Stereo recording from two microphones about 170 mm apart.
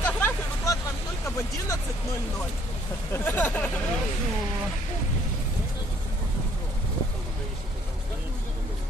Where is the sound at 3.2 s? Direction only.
10° left (ahead or behind).